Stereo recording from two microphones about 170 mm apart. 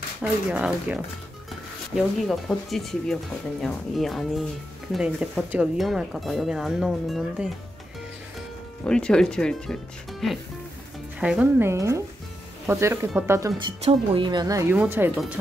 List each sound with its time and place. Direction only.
0.2 s speech: 5° right (ahead or behind)
8.8 s speech: 5° left (ahead or behind); by 13.1 s 15° right (ahead or behind)
13.7 s speech: 30° right (ahead or behind); by 15.0 s 10° right (ahead or behind)